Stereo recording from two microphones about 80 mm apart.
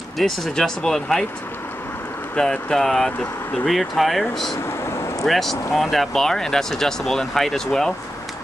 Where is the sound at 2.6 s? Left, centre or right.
Centre.